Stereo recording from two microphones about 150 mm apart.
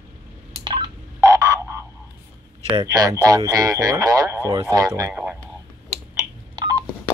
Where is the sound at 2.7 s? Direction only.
30° right (ahead or behind).